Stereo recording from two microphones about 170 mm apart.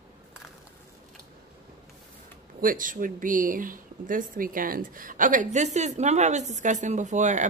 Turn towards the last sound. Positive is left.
turn(degrees=-45)  # may be behind; listen again after turning